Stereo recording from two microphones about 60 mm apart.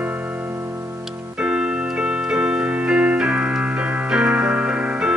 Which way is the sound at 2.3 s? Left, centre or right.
Centre.